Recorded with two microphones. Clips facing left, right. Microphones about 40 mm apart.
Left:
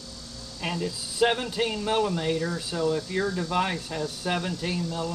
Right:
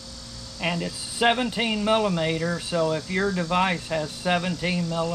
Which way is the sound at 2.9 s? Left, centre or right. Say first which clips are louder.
Right 2 dB; right.